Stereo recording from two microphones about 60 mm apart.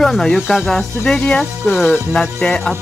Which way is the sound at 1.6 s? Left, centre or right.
Left.